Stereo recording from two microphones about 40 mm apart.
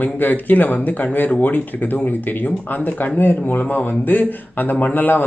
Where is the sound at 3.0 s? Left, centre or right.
Left.